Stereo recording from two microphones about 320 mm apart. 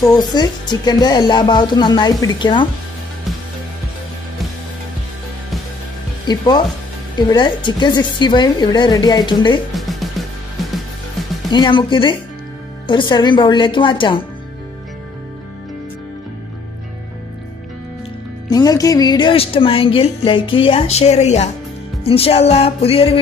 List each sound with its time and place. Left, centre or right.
0.0 s speech: centre
6.2 s speech: centre
9.8 s music: centre
11.5 s speech: centre
18.5 s speech: centre